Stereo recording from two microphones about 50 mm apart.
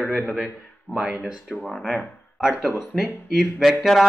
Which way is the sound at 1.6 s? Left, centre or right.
Centre.